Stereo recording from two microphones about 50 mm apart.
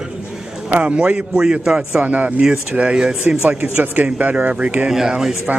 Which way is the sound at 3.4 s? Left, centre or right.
Right.